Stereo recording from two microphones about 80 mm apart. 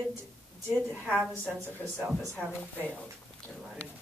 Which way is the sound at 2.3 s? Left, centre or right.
Centre.